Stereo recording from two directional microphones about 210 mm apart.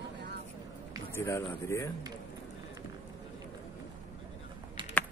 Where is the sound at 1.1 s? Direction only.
10° left (ahead or behind).